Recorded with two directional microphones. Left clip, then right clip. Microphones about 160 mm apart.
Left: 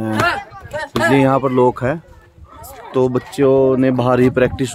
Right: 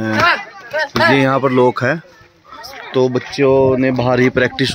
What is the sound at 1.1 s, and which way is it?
Speech, centre (ahead or behind).